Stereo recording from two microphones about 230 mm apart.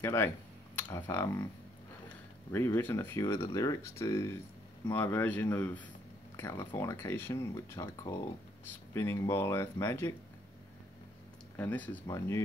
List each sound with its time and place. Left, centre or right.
0.0 s speech: centre
1.1 s speech: centre
2.5 s speech: centre
11.5 s speech: centre